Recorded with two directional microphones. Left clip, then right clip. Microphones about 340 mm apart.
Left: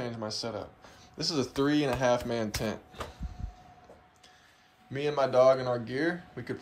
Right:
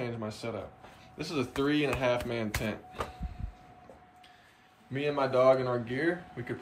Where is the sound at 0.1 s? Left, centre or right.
Left.